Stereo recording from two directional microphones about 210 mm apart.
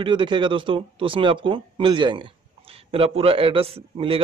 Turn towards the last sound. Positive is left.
turn(degrees=-25)  # may be behind; listen again after turning